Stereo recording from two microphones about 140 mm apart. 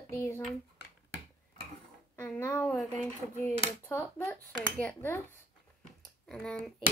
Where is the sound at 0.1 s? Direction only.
20° left (ahead or behind).